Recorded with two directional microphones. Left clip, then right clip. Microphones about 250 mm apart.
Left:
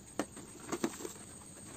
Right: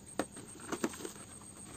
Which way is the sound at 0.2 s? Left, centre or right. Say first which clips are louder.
Right 1 dB; centre.